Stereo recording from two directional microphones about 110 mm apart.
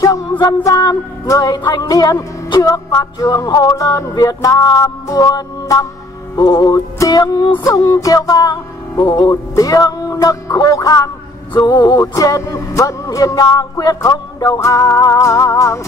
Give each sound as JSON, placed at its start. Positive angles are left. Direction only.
{"t": 0.4, "sound": "music", "side_deg": 35}